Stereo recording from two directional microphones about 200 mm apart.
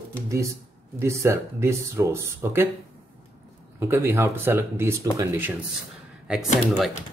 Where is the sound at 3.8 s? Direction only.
10° right (ahead or behind).